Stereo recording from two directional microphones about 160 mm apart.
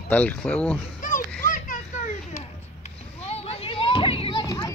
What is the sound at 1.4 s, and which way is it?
Children playing, 55° left (ahead or behind).